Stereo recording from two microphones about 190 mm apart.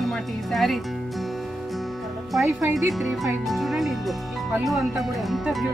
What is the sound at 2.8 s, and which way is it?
Speech, centre (ahead or behind).